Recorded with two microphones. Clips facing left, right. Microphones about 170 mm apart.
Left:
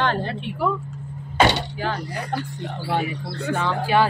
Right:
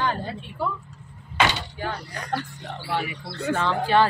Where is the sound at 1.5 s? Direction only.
80° left.